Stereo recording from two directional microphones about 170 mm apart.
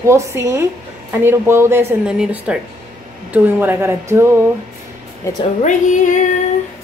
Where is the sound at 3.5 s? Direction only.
15° right (ahead or behind).